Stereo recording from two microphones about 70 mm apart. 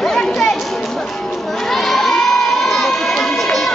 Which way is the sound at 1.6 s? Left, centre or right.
Centre.